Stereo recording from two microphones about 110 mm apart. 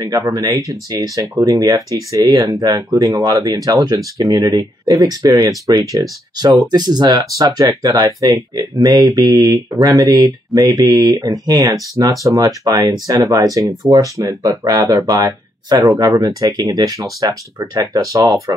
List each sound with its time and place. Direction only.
0.0 s speech: 35° right (ahead or behind)